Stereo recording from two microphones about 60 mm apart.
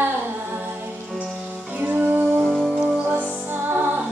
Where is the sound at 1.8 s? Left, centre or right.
Right.